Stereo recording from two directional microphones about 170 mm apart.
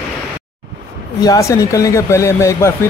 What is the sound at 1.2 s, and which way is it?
Speech, 20° left (ahead or behind).